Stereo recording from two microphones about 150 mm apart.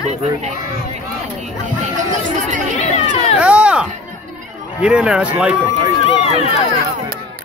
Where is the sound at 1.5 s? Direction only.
55° right (ahead or behind).